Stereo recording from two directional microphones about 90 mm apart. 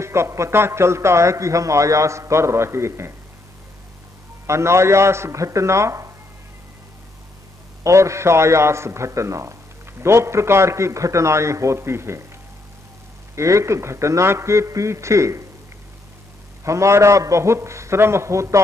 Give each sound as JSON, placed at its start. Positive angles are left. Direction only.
{"t": 0.0, "sound": "a man's voice", "side_deg": -30}
{"t": 4.5, "sound": "a man's voice", "side_deg": -30}
{"t": 7.8, "sound": "a man's voice", "side_deg": -35}
{"t": 13.4, "sound": "a man's voice", "side_deg": -35}
{"t": 16.6, "sound": "a man's voice", "side_deg": -35}